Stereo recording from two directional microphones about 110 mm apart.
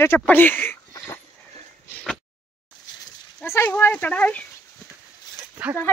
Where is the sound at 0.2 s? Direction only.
15° left (ahead or behind).